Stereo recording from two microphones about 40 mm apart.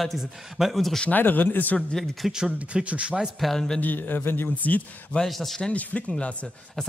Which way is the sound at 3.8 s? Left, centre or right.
Left.